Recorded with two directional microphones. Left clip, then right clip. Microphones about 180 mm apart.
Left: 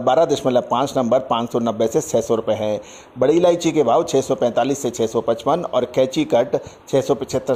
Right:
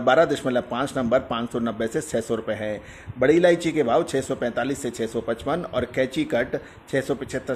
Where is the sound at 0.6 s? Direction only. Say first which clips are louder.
Left 7 dB; 20° left (ahead or behind).